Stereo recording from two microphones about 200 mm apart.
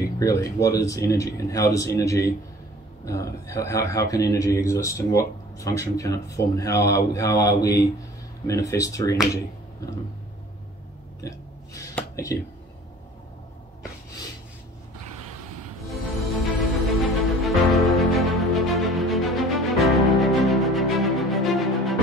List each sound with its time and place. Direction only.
0.0 s speech: 15° left (ahead or behind)
11.1 s a sound: 15° left (ahead or behind)
15.9 s music: centre (ahead or behind)